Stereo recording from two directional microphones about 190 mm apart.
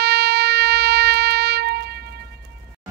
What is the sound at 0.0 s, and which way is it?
Music, 60° right (ahead or behind).